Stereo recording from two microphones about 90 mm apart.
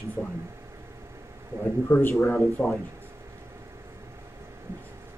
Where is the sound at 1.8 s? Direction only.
25° left (ahead or behind).